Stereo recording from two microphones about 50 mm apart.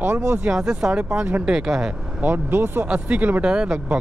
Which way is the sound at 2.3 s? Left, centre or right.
Right.